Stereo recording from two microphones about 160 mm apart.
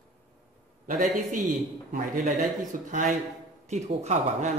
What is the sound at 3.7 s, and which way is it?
Speech, 45° right (ahead or behind).